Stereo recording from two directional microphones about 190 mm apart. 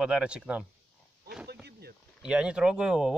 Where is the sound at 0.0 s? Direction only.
5° right (ahead or behind).